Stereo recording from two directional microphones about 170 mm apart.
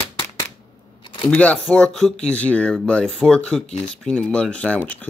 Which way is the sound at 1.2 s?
5° left (ahead or behind).